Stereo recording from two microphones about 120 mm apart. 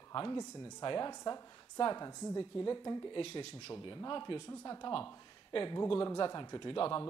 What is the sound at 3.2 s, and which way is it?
Speech, 50° left (ahead or behind).